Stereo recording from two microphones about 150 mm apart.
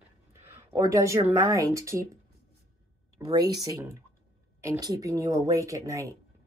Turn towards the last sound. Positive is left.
turn(degrees=-20)  # may be behind; listen again after turning